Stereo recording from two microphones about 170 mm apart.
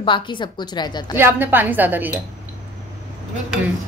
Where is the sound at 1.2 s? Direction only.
10° right (ahead or behind).